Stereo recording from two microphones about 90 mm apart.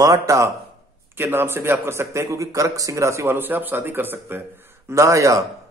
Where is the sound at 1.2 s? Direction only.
25° right (ahead or behind).